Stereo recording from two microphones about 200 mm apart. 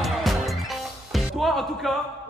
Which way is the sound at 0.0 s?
Centre (ahead or behind).